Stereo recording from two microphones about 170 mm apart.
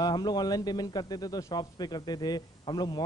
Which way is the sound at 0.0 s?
25° left (ahead or behind).